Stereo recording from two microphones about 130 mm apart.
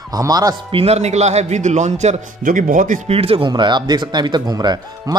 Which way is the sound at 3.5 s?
35° right (ahead or behind).